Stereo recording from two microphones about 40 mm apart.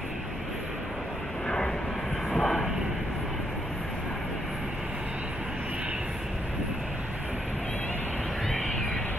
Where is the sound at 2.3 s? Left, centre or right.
Centre.